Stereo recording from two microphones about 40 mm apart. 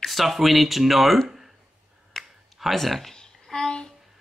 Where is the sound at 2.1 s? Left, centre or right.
Centre.